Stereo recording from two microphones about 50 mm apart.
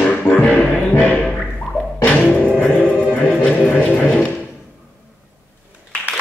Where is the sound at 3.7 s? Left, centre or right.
Left.